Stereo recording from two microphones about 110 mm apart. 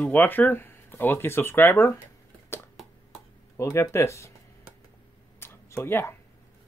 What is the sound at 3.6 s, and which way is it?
Speech, 25° left (ahead or behind).